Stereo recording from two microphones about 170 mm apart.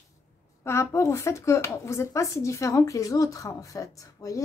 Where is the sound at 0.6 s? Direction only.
15° left (ahead or behind).